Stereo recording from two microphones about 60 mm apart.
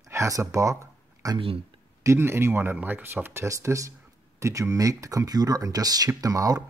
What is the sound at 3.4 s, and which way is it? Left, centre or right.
Speech, right.